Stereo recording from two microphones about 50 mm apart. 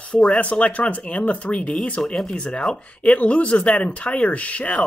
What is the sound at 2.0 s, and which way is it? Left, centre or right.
Speech, centre.